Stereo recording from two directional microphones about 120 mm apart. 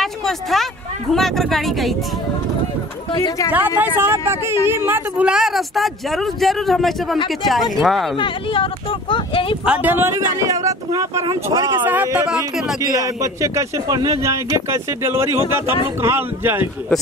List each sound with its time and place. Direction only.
0.0 s speech: centre (ahead or behind)
3.1 s speech: 35° left (ahead or behind)
3.5 s speech: 15° right (ahead or behind); by 8.2 s centre (ahead or behind)
8.2 s speech: 45° left (ahead or behind)
9.7 s a man's voice: 15° right (ahead or behind); by 11.7 s 30° right (ahead or behind)
11.8 s speech: 15° right (ahead or behind)
12.9 s a man's voice: 25° right (ahead or behind)